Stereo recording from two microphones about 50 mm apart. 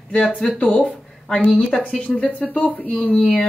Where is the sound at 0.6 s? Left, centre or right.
Left.